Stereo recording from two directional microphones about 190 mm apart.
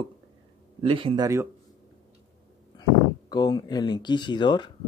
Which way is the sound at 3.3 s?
20° left (ahead or behind).